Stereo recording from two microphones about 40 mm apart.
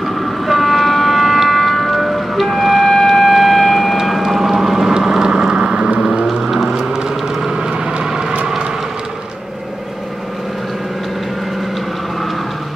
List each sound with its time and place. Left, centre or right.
0.0 s train: centre
3.9 s vehicle: centre; by 5.9 s right
6.4 s a sound: centre
7.8 s vehicle: centre